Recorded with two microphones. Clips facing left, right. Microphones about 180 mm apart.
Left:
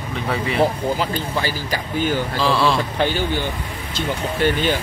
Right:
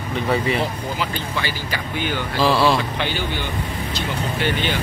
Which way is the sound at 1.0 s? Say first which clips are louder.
Left 3 dB; 35° left (ahead or behind).